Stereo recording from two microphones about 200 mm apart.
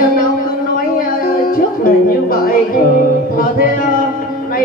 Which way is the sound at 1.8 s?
45° left (ahead or behind).